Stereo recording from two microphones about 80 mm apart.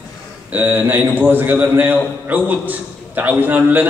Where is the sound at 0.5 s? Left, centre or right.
Right.